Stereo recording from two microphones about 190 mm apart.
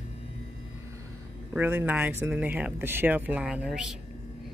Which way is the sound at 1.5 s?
10° right (ahead or behind).